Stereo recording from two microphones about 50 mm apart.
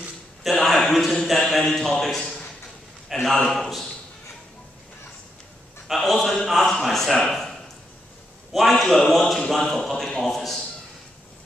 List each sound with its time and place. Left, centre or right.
0.4 s a man's voice: centre
5.9 s speech: centre
8.5 s speech: centre